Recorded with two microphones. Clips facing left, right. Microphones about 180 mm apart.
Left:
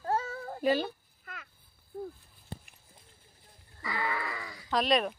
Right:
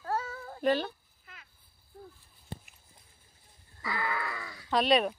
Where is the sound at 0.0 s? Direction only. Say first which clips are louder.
Left 2 dB; 25° left (ahead or behind).